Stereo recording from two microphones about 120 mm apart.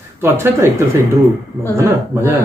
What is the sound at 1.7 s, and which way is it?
Speech, 25° right (ahead or behind).